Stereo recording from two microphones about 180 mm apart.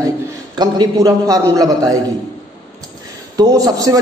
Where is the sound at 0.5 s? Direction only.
25° right (ahead or behind).